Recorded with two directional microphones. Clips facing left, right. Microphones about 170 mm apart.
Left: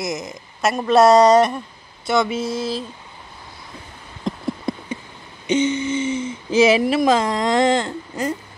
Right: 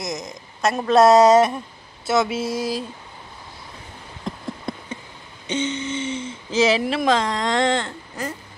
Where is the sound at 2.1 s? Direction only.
5° right (ahead or behind).